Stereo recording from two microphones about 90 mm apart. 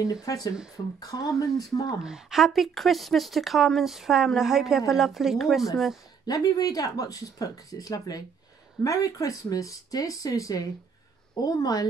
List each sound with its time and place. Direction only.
0.0 s speech: 40° left (ahead or behind)
2.0 s speech: 5° right (ahead or behind)
6.2 s speech: 45° left (ahead or behind)